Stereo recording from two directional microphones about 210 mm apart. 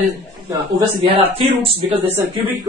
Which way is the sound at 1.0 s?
30° right (ahead or behind).